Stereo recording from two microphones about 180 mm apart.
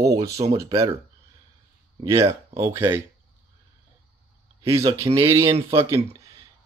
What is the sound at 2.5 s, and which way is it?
Speech, 15° right (ahead or behind).